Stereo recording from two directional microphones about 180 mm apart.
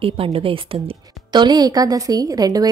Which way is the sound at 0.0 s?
30° right (ahead or behind).